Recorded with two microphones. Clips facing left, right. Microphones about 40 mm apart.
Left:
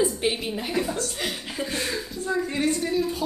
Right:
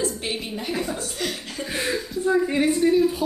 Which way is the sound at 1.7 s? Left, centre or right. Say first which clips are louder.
Right 6 dB; centre.